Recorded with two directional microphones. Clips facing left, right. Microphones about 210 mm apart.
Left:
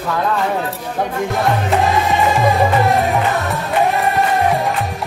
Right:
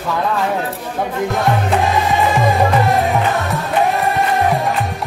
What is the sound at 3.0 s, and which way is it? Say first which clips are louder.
Music: even; centre (ahead or behind).